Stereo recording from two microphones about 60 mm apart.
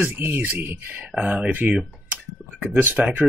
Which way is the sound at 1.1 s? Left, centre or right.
Centre.